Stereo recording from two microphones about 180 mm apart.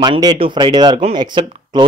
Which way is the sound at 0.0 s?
25° right (ahead or behind).